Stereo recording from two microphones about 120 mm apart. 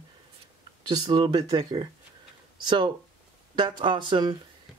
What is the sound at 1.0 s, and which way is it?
Speech, 40° right (ahead or behind).